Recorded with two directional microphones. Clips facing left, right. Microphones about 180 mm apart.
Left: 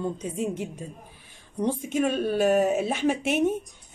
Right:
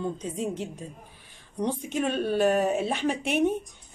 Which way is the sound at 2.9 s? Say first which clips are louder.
Left 3 dB; 45° left (ahead or behind).